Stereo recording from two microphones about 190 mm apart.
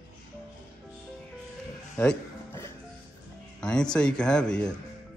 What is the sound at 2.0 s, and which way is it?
Music, 10° left (ahead or behind).